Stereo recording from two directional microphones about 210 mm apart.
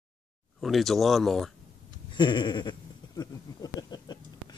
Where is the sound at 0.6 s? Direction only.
Centre (ahead or behind).